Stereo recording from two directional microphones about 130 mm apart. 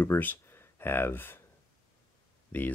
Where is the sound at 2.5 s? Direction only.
10° left (ahead or behind).